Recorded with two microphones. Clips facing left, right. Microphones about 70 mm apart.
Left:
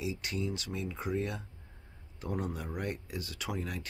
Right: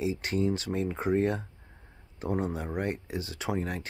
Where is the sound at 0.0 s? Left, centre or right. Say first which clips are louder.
Right 7 dB; right.